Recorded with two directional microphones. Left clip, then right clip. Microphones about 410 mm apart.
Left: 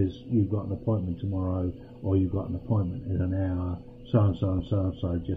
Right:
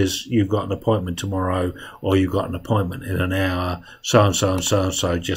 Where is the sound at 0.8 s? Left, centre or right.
Centre.